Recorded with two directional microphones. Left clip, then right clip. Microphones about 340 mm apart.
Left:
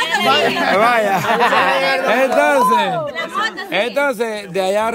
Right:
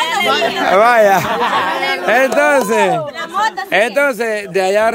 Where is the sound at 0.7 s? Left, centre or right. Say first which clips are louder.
Right 7 dB; centre.